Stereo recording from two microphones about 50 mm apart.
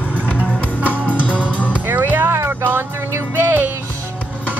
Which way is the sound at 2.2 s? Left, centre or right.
Right.